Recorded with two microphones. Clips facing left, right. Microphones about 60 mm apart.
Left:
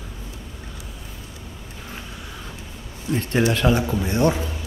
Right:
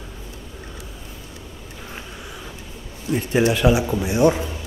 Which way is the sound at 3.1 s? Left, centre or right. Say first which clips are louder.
Right 2 dB; centre.